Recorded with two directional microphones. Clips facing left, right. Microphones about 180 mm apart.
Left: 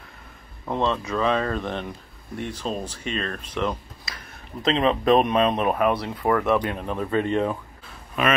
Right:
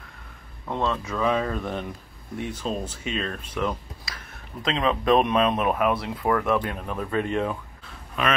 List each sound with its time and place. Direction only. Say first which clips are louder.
0.7 s speech: left 2 dB; centre (ahead or behind)